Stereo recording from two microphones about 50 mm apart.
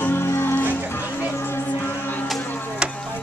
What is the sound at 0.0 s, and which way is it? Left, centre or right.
Music, left.